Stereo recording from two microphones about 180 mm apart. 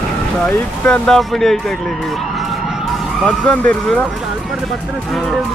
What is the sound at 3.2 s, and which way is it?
Speech, 5° left (ahead or behind).